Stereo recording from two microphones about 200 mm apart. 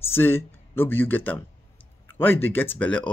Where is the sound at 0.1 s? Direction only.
10° left (ahead or behind).